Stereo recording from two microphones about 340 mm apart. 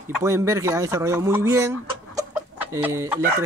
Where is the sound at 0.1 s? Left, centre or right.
Centre.